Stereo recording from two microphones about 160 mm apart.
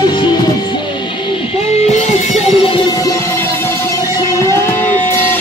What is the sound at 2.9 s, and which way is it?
Music, 20° left (ahead or behind).